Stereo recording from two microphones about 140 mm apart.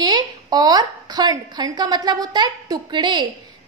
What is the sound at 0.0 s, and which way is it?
A woman's voice, 30° right (ahead or behind).